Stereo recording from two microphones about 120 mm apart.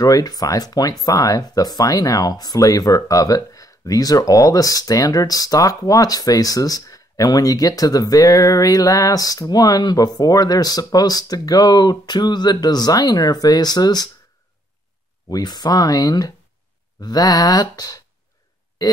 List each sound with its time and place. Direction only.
0.0 s speech: 30° left (ahead or behind)
15.2 s speech: 35° left (ahead or behind)